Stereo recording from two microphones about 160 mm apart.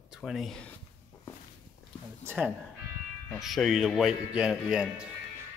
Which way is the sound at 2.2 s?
10° right (ahead or behind).